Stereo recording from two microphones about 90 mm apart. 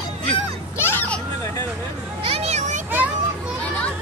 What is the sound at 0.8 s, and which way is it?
Vehicle, 25° left (ahead or behind).